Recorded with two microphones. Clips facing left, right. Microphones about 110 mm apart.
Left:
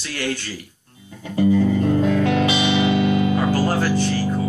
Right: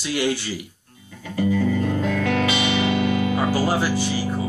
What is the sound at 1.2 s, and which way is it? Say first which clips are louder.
Music: left 4 dB; 25° left (ahead or behind).